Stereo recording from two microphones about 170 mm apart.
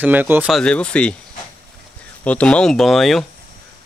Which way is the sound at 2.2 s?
5° left (ahead or behind).